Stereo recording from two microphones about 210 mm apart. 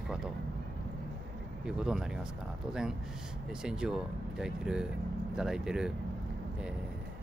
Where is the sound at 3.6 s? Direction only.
5° right (ahead or behind).